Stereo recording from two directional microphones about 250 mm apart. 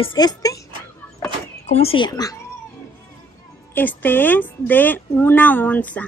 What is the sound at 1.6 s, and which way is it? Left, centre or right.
Speech, left.